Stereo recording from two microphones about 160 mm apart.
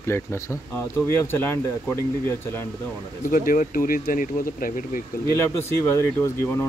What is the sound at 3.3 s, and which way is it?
Speech, 60° left (ahead or behind).